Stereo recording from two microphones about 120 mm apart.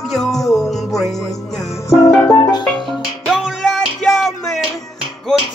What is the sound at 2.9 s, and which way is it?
Music, 5° right (ahead or behind).